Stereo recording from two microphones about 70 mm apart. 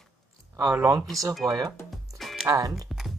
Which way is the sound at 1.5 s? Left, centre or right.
Right.